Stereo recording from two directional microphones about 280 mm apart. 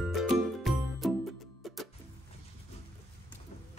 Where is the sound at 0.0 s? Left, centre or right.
Centre.